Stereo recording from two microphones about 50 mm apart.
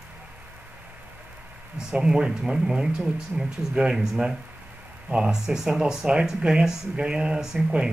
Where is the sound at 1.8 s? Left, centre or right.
Centre.